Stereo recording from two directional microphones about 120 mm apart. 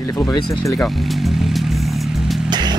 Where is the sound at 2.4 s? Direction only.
35° right (ahead or behind).